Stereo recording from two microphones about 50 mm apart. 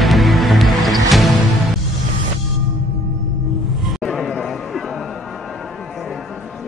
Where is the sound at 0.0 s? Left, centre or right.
Centre.